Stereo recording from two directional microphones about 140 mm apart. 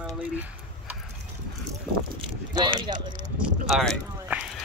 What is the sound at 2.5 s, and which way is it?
Speech, 30° right (ahead or behind).